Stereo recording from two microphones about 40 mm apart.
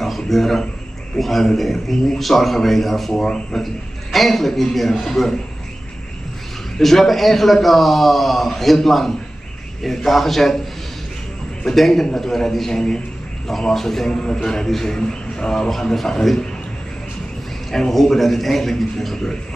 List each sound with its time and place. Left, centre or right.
0.0 s a sound: centre
1.1 s a man's voice: centre
6.8 s a man's voice: centre
17.6 s a man's voice: centre